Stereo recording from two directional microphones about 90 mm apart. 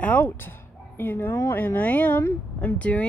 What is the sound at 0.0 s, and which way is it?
Speech, 15° left (ahead or behind).